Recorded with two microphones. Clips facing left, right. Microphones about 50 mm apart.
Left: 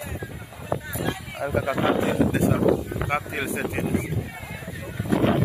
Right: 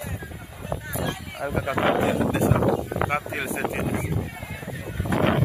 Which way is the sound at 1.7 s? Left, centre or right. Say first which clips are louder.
Right 2 dB; right.